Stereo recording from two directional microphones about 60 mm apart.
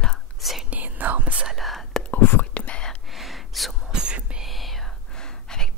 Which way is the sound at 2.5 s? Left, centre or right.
Centre.